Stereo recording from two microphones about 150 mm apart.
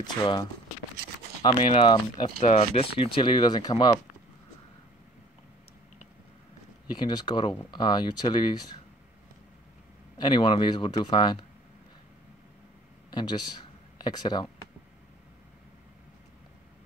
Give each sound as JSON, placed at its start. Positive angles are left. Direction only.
{"t": 0.0, "sound": "speech", "side_deg": 30}
{"t": 6.9, "sound": "speech", "side_deg": 30}
{"t": 10.1, "sound": "speech", "side_deg": 30}
{"t": 13.1, "sound": "speech", "side_deg": 30}